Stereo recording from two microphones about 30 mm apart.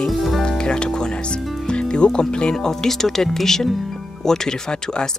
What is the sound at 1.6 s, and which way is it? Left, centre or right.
Music, left.